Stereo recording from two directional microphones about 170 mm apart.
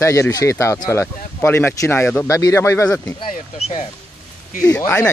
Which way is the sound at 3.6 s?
35° left (ahead or behind).